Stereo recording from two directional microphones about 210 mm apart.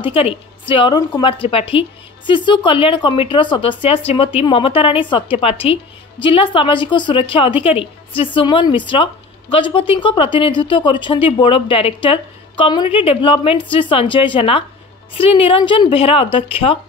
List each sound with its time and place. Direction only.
0.0 s a woman's voice: 25° left (ahead or behind)